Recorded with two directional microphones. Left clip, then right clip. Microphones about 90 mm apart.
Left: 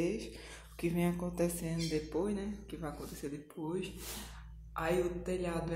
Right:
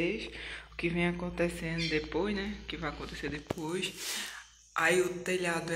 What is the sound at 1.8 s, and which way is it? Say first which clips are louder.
A woman's voice: right 4 dB; 15° left (ahead or behind).